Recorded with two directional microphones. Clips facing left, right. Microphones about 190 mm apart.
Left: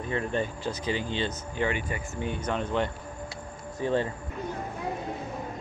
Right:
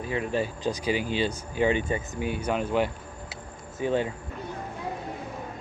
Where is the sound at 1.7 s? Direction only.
25° right (ahead or behind).